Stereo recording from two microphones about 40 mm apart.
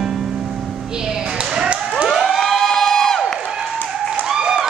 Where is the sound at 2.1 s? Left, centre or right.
Centre.